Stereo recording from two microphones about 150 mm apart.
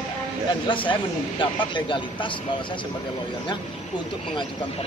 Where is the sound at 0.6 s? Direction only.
35° left (ahead or behind).